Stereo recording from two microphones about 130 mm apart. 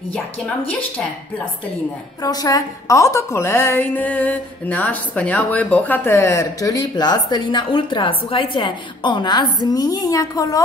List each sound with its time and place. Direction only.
2.2 s a woman's voice: 30° left (ahead or behind)